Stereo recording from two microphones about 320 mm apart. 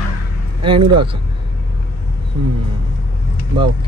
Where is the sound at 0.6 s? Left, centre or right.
Centre.